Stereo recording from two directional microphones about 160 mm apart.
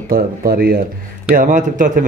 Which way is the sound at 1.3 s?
60° right (ahead or behind).